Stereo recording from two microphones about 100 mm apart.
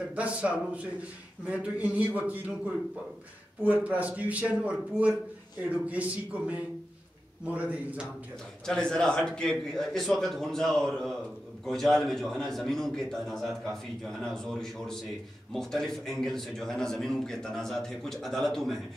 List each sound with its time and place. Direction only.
0.1 s speech: 15° right (ahead or behind)
8.6 s a man's voice: 5° left (ahead or behind)